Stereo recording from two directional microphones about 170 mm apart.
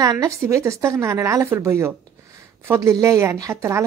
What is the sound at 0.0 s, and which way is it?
Speech, 20° right (ahead or behind).